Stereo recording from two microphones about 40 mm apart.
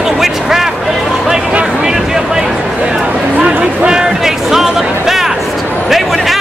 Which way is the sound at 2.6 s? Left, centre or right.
Right.